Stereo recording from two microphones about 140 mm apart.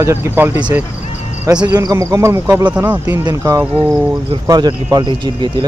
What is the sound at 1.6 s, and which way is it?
Speech, 25° right (ahead or behind).